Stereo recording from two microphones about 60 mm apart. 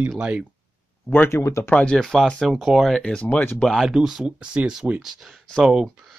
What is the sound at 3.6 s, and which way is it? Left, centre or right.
Speech, centre.